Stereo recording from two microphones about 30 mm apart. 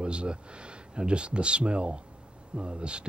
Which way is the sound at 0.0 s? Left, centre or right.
Right.